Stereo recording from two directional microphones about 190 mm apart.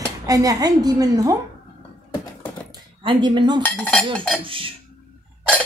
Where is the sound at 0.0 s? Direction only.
20° right (ahead or behind).